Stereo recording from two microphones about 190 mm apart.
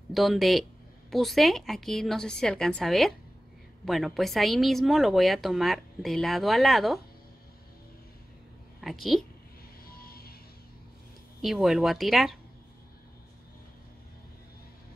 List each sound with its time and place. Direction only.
0.1 s a woman's voice: centre (ahead or behind)
8.8 s a woman's voice: centre (ahead or behind)
10.0 s music: 50° left (ahead or behind)
11.4 s a woman's voice: 5° right (ahead or behind)